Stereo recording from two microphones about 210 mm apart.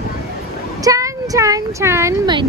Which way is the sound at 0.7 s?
15° right (ahead or behind).